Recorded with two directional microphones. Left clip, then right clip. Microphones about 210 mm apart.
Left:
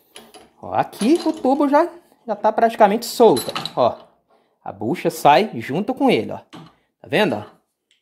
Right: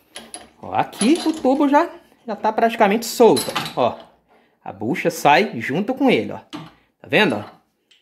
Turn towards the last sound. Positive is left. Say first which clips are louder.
# right 2 dB
turn(degrees=30)  # may be behind; listen again after turning